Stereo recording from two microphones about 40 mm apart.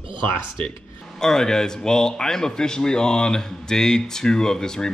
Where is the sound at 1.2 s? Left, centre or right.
Centre.